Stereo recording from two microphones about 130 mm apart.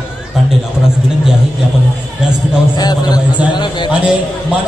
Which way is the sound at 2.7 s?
30° left (ahead or behind).